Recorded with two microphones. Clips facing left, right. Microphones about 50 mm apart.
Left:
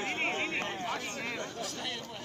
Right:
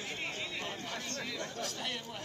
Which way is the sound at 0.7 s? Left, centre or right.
Left.